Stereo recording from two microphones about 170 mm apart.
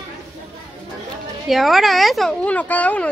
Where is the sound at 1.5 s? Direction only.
Centre (ahead or behind).